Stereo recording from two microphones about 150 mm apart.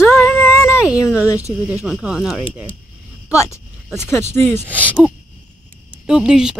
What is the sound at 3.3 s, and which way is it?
Speech, 20° left (ahead or behind).